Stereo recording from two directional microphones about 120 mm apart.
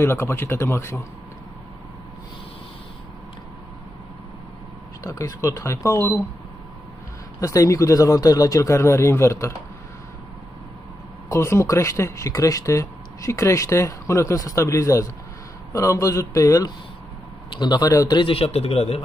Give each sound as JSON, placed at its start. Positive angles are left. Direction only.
{"t": 0.0, "sound": "speech", "side_deg": 20}
{"t": 5.0, "sound": "speech", "side_deg": 30}
{"t": 7.3, "sound": "speech", "side_deg": 25}
{"t": 11.2, "sound": "a man's voice", "side_deg": 25}
{"t": 18.3, "sound": "speech", "side_deg": 55}